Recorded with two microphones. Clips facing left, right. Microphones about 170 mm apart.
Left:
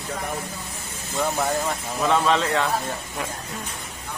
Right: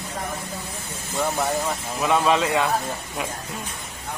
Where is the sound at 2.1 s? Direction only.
10° right (ahead or behind).